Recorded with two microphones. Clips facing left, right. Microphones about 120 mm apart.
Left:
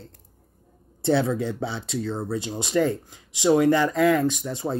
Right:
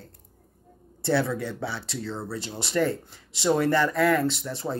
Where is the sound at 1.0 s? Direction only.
20° left (ahead or behind).